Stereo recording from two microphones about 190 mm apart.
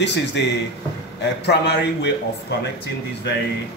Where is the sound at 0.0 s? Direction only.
65° left (ahead or behind).